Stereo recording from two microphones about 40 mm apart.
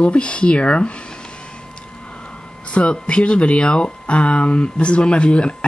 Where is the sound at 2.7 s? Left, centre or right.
Left.